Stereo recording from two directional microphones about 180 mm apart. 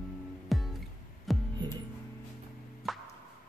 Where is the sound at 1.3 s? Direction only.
Centre (ahead or behind).